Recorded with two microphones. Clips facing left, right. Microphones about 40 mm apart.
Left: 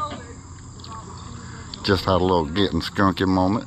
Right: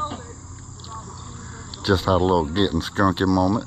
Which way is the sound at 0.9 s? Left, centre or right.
Left.